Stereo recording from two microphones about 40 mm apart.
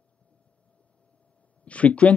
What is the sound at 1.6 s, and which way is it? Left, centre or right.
Speech, left.